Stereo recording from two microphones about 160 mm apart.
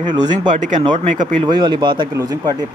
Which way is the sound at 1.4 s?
30° right (ahead or behind).